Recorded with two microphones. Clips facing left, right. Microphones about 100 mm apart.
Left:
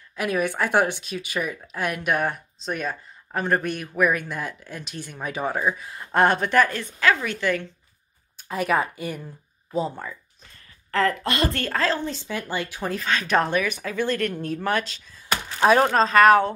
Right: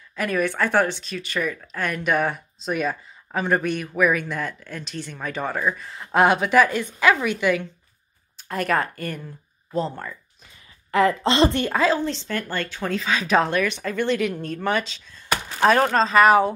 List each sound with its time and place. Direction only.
0.1 s a woman's voice: 10° left (ahead or behind); by 7.6 s 10° right (ahead or behind)
8.4 s speech: 5° left (ahead or behind)
10.9 s speech: 15° right (ahead or behind)
12.0 s speech: 5° left (ahead or behind)
13.0 s speech: 5° right (ahead or behind)